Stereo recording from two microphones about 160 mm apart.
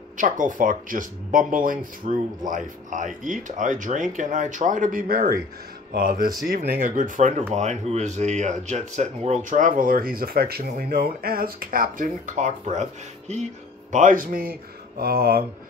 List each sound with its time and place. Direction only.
0.2 s speech: 55° right (ahead or behind)
13.9 s speech: 55° right (ahead or behind); by 15.4 s 75° right (ahead or behind)